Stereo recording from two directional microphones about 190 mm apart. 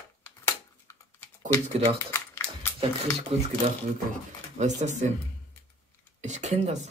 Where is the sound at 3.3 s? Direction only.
30° right (ahead or behind).